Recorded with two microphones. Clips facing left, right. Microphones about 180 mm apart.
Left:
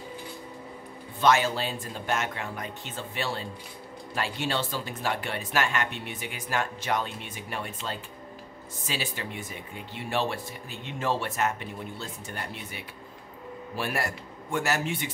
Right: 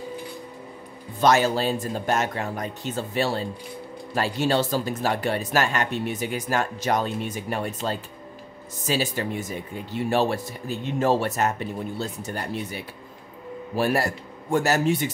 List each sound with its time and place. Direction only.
1.2 s speech: 40° right (ahead or behind)